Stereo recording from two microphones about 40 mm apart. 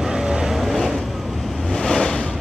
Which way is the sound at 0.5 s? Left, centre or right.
Centre.